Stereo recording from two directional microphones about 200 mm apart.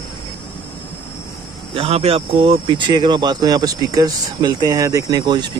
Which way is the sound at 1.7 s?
30° right (ahead or behind).